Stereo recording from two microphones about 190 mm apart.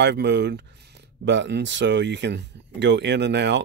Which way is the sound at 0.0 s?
65° right (ahead or behind).